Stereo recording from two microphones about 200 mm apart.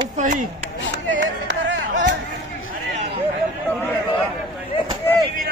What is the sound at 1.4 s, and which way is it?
Music, 65° right (ahead or behind).